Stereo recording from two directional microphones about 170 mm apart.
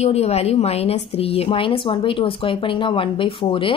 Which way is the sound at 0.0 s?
40° left (ahead or behind).